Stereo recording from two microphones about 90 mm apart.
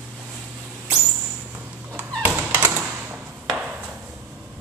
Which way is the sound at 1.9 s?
15° right (ahead or behind).